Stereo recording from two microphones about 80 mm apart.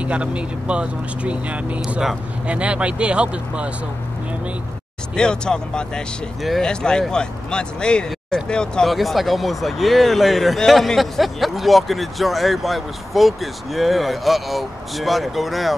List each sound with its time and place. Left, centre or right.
0.0 s speech: centre
5.1 s speech: centre
8.9 s speech: centre